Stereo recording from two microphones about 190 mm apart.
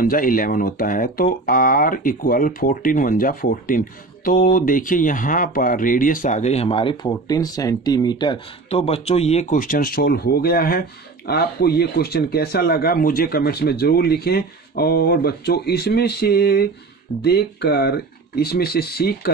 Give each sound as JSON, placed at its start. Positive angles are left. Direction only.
{"t": 0.0, "sound": "speech", "side_deg": 45}